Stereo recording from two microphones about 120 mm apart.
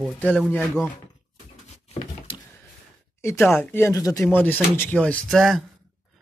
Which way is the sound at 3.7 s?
25° left (ahead or behind).